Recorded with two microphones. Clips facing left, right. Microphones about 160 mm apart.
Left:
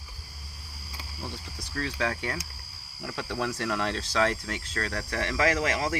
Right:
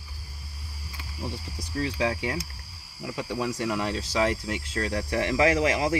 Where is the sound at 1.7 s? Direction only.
15° right (ahead or behind).